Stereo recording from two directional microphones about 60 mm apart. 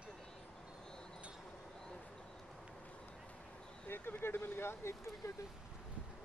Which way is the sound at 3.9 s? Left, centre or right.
Left.